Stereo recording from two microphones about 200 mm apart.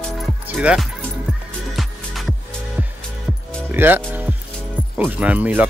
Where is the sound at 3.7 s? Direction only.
10° right (ahead or behind).